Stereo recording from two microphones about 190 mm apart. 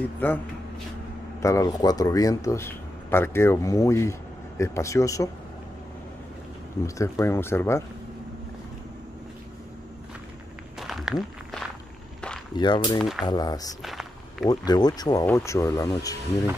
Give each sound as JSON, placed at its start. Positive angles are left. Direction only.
{"t": 0.2, "sound": "speech", "side_deg": 10}
{"t": 1.4, "sound": "speech", "side_deg": 15}
{"t": 7.0, "sound": "speech", "side_deg": 15}
{"t": 10.8, "sound": "walk", "side_deg": 0}
{"t": 12.5, "sound": "speech", "side_deg": 25}
{"t": 13.8, "sound": "walk", "side_deg": 0}
{"t": 14.5, "sound": "speech", "side_deg": 20}